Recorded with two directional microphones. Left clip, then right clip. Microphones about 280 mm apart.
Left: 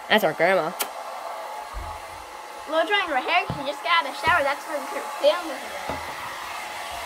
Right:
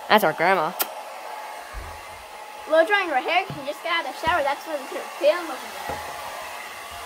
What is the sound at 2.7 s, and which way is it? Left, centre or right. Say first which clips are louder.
Speech: right 3 dB; right.